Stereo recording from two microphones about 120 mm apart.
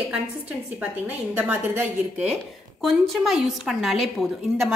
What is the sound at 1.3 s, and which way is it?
A woman's voice, 15° right (ahead or behind).